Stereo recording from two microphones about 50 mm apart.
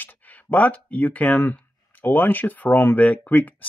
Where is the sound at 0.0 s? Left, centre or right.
Left.